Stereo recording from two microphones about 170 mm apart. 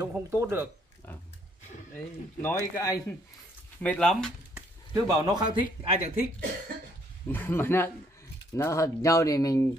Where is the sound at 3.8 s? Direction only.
5° left (ahead or behind).